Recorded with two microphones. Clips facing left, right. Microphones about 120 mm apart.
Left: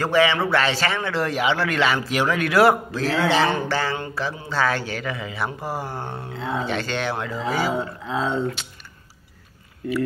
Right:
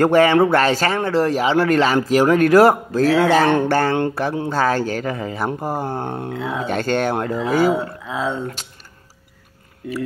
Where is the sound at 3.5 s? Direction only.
60° right (ahead or behind).